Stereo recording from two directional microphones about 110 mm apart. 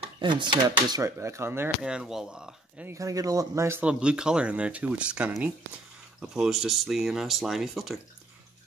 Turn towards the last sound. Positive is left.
turn(degrees=0)  # may be behind; listen again after turning